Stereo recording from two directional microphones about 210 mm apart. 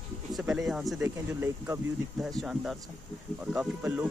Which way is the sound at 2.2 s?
Centre (ahead or behind).